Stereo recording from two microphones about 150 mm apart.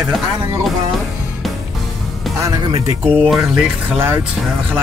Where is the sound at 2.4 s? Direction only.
20° right (ahead or behind).